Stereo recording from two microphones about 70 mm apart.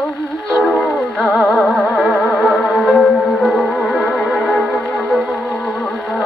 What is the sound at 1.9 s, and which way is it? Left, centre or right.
Music, centre.